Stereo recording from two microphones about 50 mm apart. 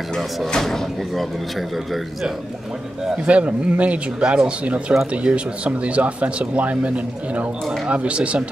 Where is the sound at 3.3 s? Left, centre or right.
Right.